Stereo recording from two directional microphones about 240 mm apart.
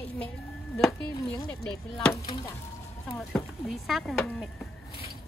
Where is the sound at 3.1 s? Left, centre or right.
Centre.